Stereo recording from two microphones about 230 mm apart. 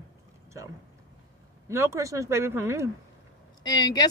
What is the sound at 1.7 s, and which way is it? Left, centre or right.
Speech, centre.